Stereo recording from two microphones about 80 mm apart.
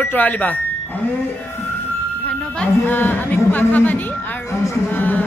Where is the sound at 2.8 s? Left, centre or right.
Left.